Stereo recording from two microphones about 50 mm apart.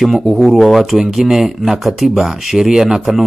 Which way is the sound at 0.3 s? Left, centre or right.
Centre.